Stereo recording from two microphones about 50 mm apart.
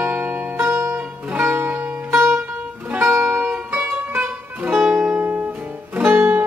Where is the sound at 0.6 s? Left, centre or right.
Right.